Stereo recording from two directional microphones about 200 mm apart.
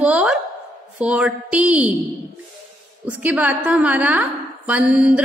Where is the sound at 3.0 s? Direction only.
10° right (ahead or behind).